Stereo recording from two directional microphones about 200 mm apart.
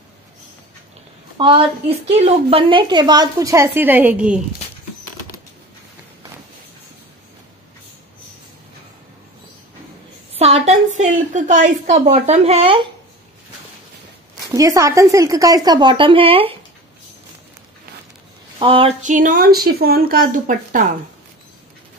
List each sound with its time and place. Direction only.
1.4 s a woman's voice: 25° right (ahead or behind); by 4.4 s 5° right (ahead or behind)
10.3 s a sound: 30° right (ahead or behind)
11.0 s speech: 35° right (ahead or behind)
14.5 s a woman's voice: 15° right (ahead or behind)
18.6 s speech: 25° right (ahead or behind)